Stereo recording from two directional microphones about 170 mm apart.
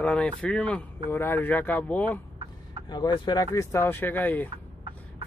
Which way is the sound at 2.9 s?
25° left (ahead or behind).